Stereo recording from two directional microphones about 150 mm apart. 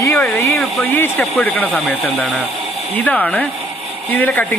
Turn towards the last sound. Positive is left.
turn(degrees=10)  # may be behind; listen again after turning